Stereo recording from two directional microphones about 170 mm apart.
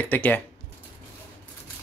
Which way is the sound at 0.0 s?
10° left (ahead or behind).